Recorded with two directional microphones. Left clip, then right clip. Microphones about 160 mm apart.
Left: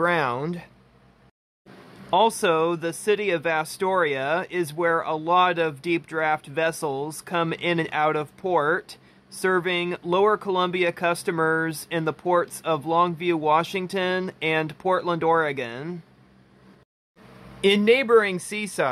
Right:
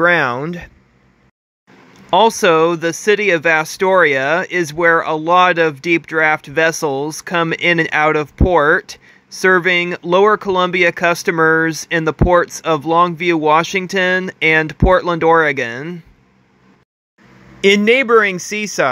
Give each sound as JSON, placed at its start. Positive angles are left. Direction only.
{"t": 0.0, "sound": "speech", "side_deg": -25}
{"t": 2.0, "sound": "speech", "side_deg": -30}
{"t": 17.6, "sound": "speech", "side_deg": -25}